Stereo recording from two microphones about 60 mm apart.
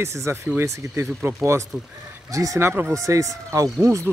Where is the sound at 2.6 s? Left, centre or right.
Right.